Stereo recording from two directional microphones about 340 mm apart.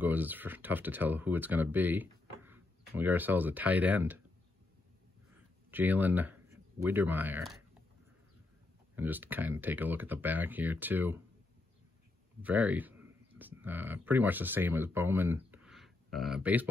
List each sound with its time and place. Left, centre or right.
0.0 s speech: centre
5.7 s speech: centre
8.9 s speech: centre
12.4 s speech: centre